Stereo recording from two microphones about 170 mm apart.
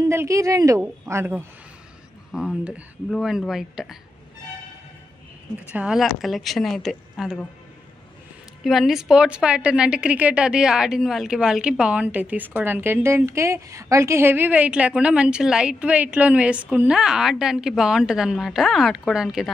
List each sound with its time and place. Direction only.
0.0 s a woman's voice: 15° right (ahead or behind)
5.7 s a woman's voice: 5° right (ahead or behind)
8.6 s a woman's voice: centre (ahead or behind)